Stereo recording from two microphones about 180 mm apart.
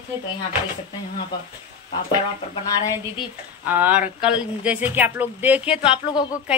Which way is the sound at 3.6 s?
10° right (ahead or behind).